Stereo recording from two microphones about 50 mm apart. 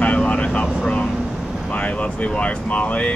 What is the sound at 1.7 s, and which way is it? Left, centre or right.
Speech, left.